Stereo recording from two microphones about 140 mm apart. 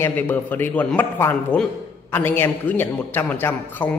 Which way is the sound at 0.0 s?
15° left (ahead or behind).